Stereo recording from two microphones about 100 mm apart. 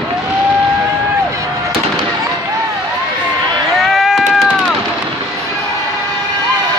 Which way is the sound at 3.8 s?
5° right (ahead or behind).